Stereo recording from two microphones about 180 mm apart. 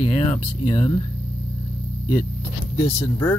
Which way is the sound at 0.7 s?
25° left (ahead or behind).